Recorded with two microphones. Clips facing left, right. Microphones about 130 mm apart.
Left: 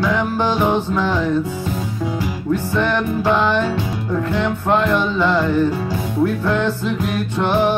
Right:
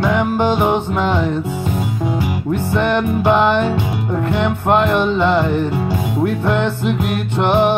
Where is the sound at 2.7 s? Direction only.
20° right (ahead or behind).